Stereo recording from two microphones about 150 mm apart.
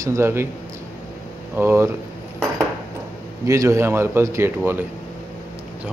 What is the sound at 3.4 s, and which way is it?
A man's voice, 20° right (ahead or behind).